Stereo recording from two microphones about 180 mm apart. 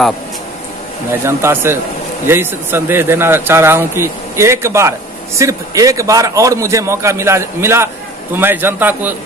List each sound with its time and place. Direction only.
1.2 s a man's voice: 15° right (ahead or behind)